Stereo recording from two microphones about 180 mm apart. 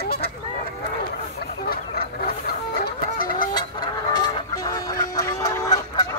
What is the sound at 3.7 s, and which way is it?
Fowl, 20° left (ahead or behind).